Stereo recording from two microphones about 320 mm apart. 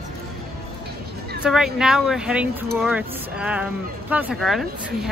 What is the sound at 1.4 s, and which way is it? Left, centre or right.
Speech, centre.